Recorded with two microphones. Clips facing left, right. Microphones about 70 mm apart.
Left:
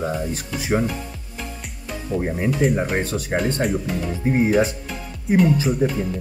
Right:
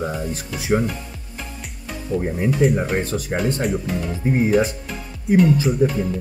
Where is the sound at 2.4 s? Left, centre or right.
Centre.